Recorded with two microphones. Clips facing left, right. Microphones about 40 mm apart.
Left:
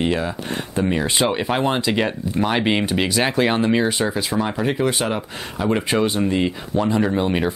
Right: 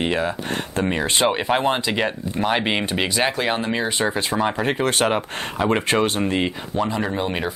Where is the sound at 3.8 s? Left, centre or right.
Centre.